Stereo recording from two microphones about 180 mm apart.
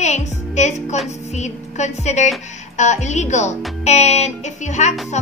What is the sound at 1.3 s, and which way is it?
Speech, 40° left (ahead or behind).